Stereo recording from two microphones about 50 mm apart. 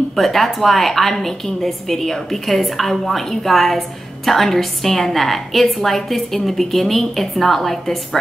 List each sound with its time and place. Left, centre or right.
0.1 s a woman's voice: centre